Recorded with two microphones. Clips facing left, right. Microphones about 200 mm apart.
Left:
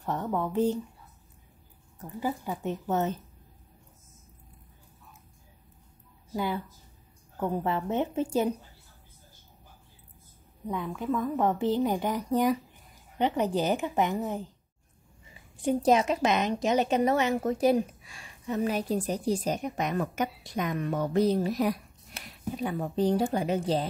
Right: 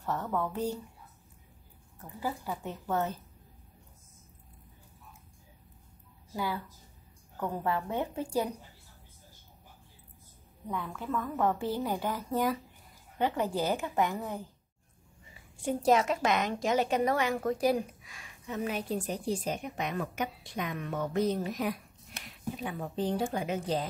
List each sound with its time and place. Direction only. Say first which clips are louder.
0.0 s a woman's voice: left 2 dB; 15° left (ahead or behind)
2.0 s a woman's voice: left 4 dB; 20° left (ahead or behind)
6.3 s a woman's voice: left 4 dB; 20° left (ahead or behind)
10.7 s a woman's voice: left 5 dB; 15° left (ahead or behind)
15.5 s a woman's voice: left 3 dB; 20° left (ahead or behind)